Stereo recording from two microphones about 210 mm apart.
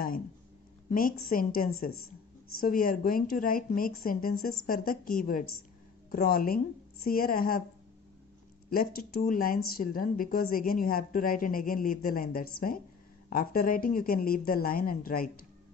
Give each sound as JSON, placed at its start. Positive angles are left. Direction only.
{"t": 0.8, "sound": "a woman's voice", "side_deg": 40}
{"t": 8.6, "sound": "a woman's voice", "side_deg": 45}